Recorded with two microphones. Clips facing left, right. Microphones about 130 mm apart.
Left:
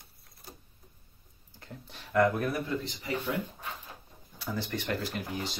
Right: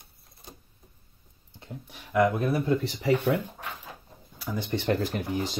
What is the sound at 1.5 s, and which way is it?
Speech, 20° right (ahead or behind).